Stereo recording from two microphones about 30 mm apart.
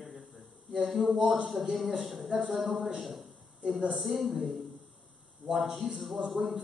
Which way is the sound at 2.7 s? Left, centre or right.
Centre.